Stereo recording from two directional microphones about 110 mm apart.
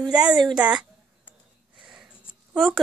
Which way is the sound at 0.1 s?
10° right (ahead or behind).